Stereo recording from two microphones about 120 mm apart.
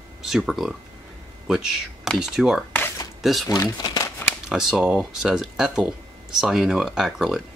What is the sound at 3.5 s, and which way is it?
Speech, 30° left (ahead or behind).